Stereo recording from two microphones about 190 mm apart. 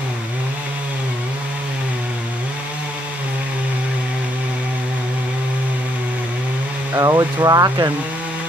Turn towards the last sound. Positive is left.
turn(degrees=-20)  # may be behind; listen again after turning